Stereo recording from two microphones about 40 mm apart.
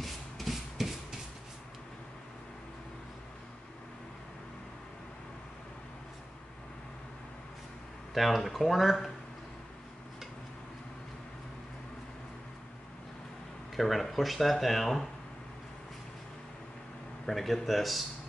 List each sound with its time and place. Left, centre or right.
0.0 s rub: centre
8.1 s speech: centre
13.7 s speech: centre
17.3 s speech: centre